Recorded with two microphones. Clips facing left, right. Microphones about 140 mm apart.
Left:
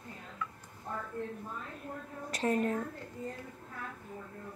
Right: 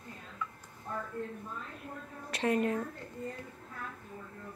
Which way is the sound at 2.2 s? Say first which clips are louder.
Right 1 dB; 40° left (ahead or behind).